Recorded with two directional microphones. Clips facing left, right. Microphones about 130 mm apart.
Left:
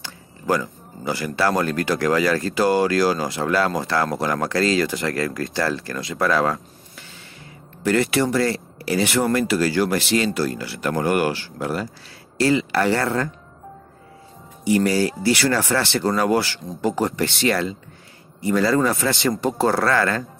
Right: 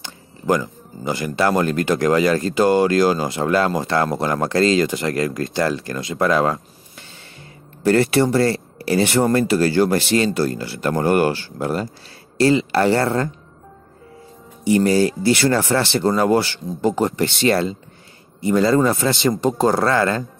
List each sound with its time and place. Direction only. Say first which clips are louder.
0.0 s speech: right 3 dB; 20° right (ahead or behind)
7.8 s speech: right 4 dB; 30° right (ahead or behind)
14.6 s speech: right 3 dB; 30° right (ahead or behind)